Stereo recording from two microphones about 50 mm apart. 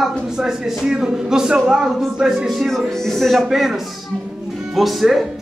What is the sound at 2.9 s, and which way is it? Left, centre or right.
Music, centre.